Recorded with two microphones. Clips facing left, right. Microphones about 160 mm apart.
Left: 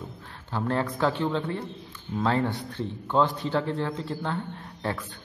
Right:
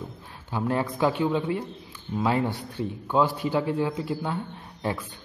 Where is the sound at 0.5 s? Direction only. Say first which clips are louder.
Right 1 dB; 10° right (ahead or behind).